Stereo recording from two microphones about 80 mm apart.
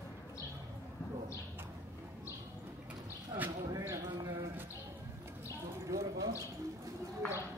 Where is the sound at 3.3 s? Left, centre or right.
Right.